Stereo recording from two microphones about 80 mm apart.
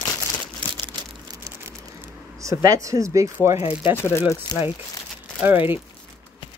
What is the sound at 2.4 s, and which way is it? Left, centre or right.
Speech, right.